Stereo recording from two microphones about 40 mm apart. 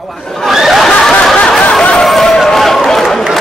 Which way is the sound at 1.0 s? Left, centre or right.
Centre.